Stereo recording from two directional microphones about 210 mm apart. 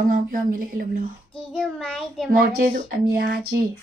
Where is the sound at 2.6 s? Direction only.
40° right (ahead or behind).